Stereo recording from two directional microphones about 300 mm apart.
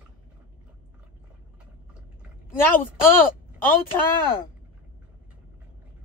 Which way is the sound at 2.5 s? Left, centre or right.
Centre.